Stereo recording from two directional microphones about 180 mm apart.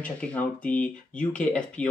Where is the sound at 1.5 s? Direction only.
5° left (ahead or behind).